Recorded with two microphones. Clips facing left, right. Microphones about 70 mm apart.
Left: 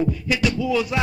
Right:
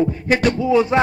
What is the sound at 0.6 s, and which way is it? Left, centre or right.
Speech, right.